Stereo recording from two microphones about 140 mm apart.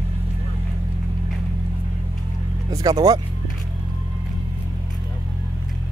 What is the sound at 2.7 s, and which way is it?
Speech, 25° right (ahead or behind).